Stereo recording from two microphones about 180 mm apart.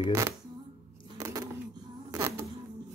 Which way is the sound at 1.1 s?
15° right (ahead or behind).